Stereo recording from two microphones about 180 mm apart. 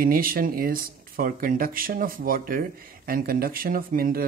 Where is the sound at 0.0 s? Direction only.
55° right (ahead or behind).